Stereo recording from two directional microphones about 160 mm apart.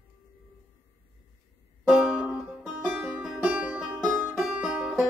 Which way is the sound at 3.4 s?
10° right (ahead or behind).